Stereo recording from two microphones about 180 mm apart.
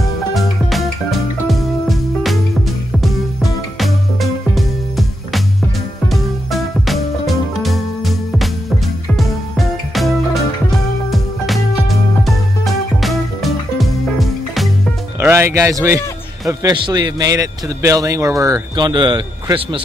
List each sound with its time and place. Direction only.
0.3 s music: centre (ahead or behind)
3.7 s music: centre (ahead or behind)
13.0 s music: centre (ahead or behind)
15.1 s a man's voice: 15° right (ahead or behind)